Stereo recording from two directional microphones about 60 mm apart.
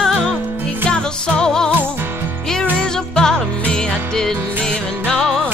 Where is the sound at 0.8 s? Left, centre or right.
Centre.